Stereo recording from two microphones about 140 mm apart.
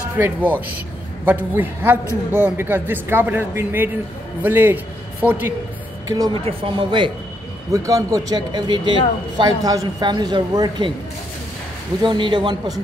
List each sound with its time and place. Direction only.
0.2 s speech: 15° right (ahead or behind)
6.0 s speech: 25° right (ahead or behind)
6.3 s speech: 40° right (ahead or behind)
7.7 s a woman's voice: 25° right (ahead or behind)
12.0 s speech: 35° right (ahead or behind)